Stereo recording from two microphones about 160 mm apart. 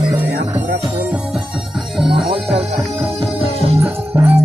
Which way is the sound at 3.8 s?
10° right (ahead or behind).